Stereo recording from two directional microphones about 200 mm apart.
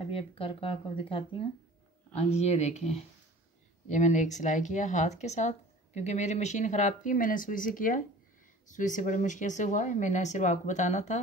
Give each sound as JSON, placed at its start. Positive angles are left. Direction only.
{"t": 0.1, "sound": "speech", "side_deg": 25}